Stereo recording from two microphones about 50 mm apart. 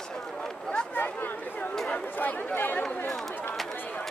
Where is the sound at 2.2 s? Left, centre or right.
Left.